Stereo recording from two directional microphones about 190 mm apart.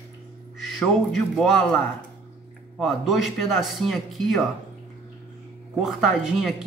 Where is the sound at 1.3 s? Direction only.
Centre (ahead or behind).